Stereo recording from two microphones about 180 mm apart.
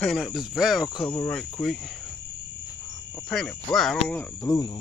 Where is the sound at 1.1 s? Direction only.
10° left (ahead or behind).